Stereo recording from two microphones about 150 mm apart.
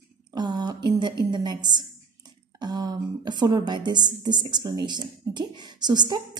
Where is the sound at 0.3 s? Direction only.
25° right (ahead or behind).